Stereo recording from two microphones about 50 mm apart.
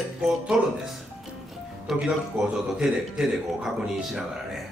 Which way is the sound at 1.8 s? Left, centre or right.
Centre.